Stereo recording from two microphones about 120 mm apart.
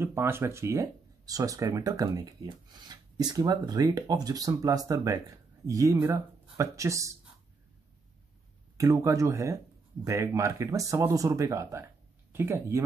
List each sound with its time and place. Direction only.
0.0 s speech: 20° right (ahead or behind)
8.7 s speech: 25° right (ahead or behind)